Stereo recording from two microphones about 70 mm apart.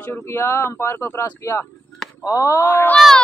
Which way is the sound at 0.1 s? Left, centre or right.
Left.